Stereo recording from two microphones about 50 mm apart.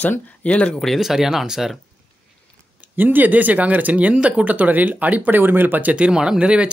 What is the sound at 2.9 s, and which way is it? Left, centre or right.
Speech, right.